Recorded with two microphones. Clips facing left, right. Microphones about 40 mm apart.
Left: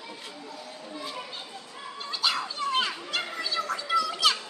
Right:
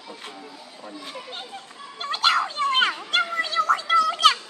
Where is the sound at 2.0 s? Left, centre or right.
Right.